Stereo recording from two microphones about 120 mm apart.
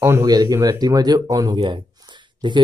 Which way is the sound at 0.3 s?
30° right (ahead or behind).